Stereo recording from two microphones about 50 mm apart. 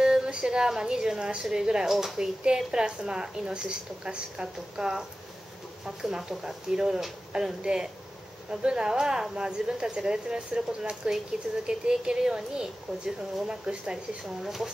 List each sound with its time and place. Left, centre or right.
0.0 s a woman's voice: centre
14.4 s speech: centre